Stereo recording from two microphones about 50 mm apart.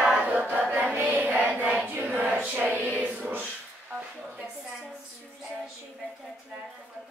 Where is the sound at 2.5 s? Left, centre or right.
Right.